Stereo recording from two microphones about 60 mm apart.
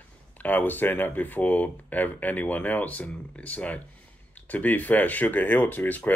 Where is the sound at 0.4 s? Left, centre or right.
Left.